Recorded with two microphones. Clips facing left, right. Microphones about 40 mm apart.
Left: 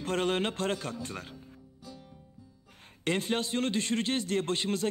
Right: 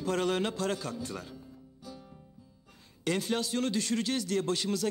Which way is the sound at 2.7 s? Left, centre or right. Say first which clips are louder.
Left 1 dB; left.